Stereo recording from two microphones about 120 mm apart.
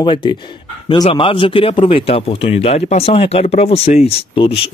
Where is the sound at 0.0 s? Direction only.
45° left (ahead or behind).